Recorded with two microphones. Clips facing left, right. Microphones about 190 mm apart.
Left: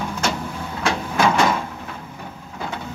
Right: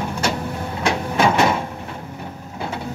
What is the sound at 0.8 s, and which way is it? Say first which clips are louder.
Printer: right 1 dB; 15° right (ahead or behind).